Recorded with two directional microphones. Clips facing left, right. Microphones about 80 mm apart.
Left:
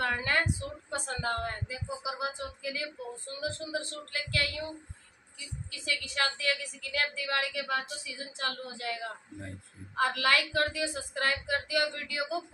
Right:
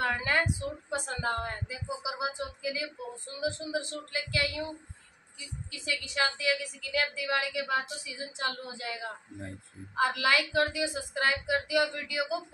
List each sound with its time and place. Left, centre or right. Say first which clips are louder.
0.0 s speech: right 1 dB; centre
5.7 s speech: even; centre